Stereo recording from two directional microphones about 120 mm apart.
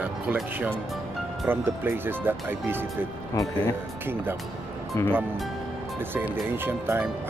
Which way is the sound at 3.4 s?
30° left (ahead or behind).